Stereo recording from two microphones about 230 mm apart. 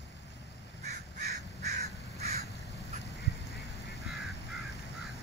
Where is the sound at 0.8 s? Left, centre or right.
Right.